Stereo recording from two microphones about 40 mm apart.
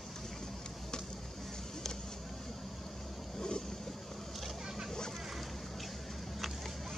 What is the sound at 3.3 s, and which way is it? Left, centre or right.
Boat, centre.